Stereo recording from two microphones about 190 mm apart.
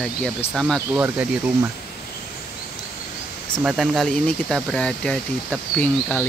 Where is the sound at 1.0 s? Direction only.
15° right (ahead or behind).